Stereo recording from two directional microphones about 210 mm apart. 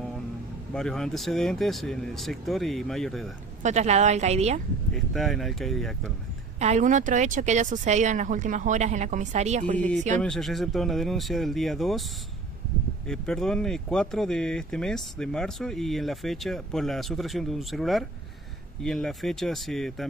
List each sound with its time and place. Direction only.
0.7 s speech: 5° left (ahead or behind)
3.6 s speech: 30° right (ahead or behind)
4.9 s speech: centre (ahead or behind)
6.6 s speech: 35° right (ahead or behind)
10.2 s speech: centre (ahead or behind)
13.0 s speech: 5° left (ahead or behind)